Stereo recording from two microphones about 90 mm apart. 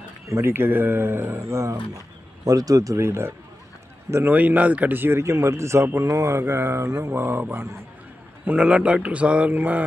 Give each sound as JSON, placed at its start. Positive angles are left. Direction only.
{"t": 0.3, "sound": "a man's voice", "side_deg": -25}
{"t": 8.5, "sound": "speech", "side_deg": -15}